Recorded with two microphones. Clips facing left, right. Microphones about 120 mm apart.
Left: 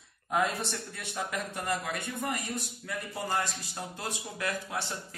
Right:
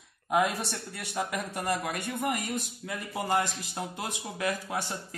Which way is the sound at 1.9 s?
15° right (ahead or behind).